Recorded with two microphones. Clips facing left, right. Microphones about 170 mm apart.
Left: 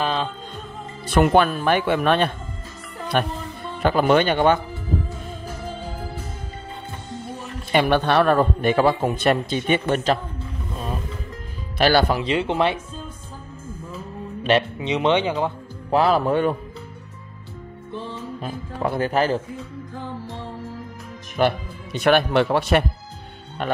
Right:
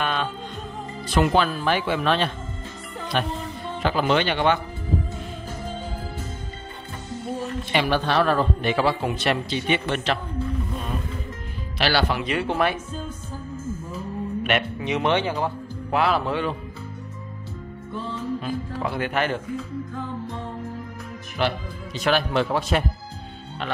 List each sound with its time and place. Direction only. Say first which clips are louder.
0.0 s music: left 2 dB; 30° left (ahead or behind)
1.1 s a man's voice: left 4 dB; 60° left (ahead or behind)
7.7 s a man's voice: left 4 dB; 55° left (ahead or behind)
11.8 s a man's voice: left 5 dB; 45° left (ahead or behind)
12.2 s speech: left 2 dB; 25° left (ahead or behind)
14.8 s speech: left 3 dB; 20° left (ahead or behind)
15.9 s speech: left 4 dB; 35° left (ahead or behind)
18.4 s speech: left 1 dB; 45° left (ahead or behind)
21.4 s speech: left 5 dB; 55° left (ahead or behind)